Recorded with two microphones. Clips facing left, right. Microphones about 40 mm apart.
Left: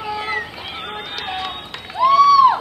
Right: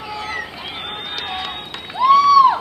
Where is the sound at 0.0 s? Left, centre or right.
Centre.